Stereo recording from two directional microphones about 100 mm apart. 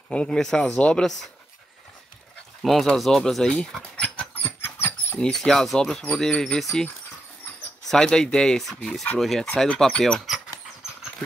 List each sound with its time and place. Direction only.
0.1 s speech: 10° left (ahead or behind)
2.6 s speech: centre (ahead or behind)
4.5 s a sound: 20° left (ahead or behind)
5.2 s speech: 5° left (ahead or behind)
7.9 s speech: 5° left (ahead or behind)